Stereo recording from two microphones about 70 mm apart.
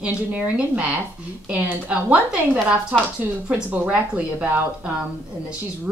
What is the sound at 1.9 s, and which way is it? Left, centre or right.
Speech, centre.